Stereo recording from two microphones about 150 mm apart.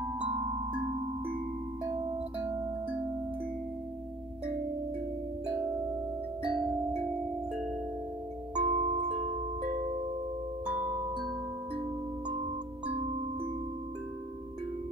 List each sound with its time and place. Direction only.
6.4 s singing bowl: 5° right (ahead or behind)
8.5 s tubular bells: 50° right (ahead or behind)